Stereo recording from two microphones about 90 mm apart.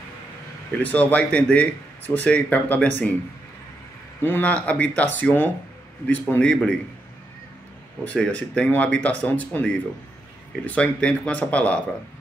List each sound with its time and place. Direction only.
0.9 s speech: 15° left (ahead or behind)
4.2 s speech: 20° left (ahead or behind)
8.0 s speech: 15° left (ahead or behind)